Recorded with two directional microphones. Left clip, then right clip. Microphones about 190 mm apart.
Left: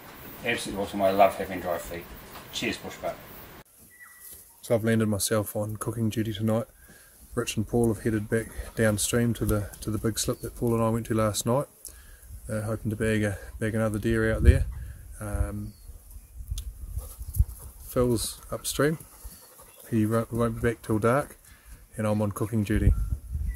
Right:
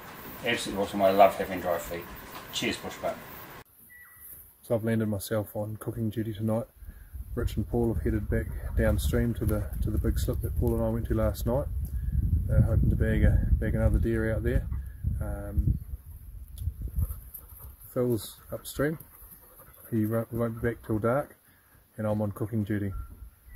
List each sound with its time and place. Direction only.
0.4 s speech: centre (ahead or behind)
4.6 s speech: 10° left (ahead or behind)
17.9 s speech: 15° left (ahead or behind)